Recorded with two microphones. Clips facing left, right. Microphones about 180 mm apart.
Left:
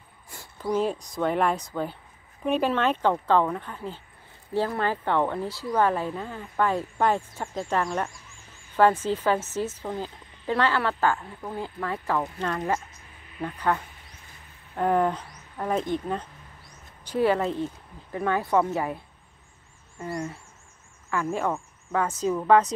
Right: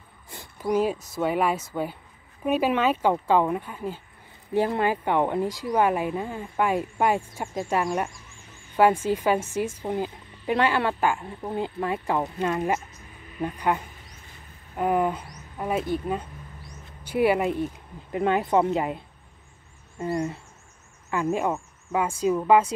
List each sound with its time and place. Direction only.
0.3 s a woman's voice: 15° right (ahead or behind)